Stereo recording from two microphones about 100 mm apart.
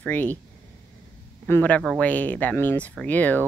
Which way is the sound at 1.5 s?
15° left (ahead or behind).